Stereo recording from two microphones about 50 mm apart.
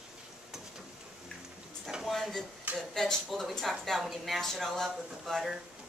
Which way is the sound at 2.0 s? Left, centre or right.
Centre.